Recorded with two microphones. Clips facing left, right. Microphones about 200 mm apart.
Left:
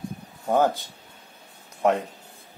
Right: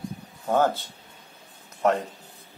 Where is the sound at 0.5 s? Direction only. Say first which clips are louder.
Left 1 dB; 15° left (ahead or behind).